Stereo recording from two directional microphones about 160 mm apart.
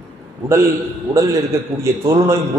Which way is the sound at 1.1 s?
20° right (ahead or behind).